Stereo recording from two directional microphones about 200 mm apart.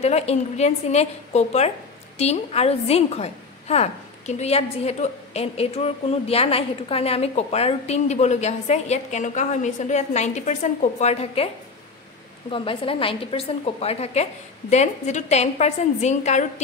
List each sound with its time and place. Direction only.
0.0 s a woman's voice: 30° left (ahead or behind)